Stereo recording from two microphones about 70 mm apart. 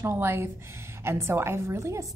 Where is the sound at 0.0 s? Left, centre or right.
Right.